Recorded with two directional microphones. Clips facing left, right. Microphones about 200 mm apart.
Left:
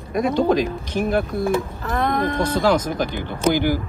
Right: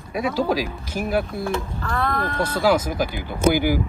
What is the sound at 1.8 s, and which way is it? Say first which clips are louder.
Speech: left 3 dB; 20° left (ahead or behind).